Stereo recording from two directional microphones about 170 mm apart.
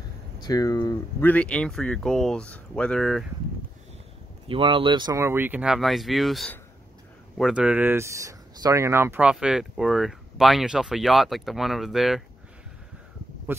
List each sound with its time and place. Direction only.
0.4 s speech: 20° left (ahead or behind)
1.2 s speech: 10° left (ahead or behind)
4.5 s speech: 30° right (ahead or behind); by 12.2 s centre (ahead or behind)
13.5 s speech: 15° right (ahead or behind)